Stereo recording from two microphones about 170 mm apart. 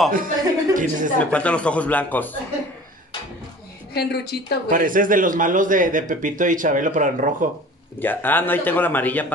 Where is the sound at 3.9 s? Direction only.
70° left (ahead or behind).